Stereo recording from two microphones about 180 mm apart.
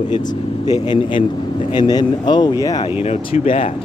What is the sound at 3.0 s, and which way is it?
Speech, 35° left (ahead or behind).